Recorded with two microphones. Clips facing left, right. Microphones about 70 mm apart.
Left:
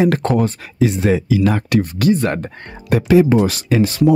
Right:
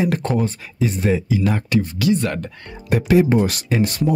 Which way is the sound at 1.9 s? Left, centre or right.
Left.